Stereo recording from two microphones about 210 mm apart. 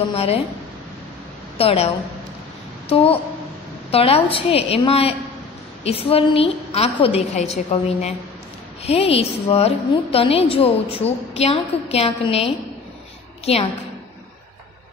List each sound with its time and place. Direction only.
0.1 s a woman's voice: 30° left (ahead or behind)
1.6 s a woman's voice: 25° left (ahead or behind)
2.9 s a woman's voice: 25° left (ahead or behind)